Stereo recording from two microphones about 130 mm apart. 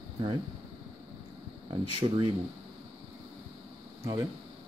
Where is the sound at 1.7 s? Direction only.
45° right (ahead or behind).